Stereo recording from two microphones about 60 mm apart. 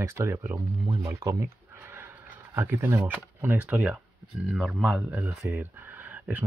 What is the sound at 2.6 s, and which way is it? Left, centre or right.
Speech, right.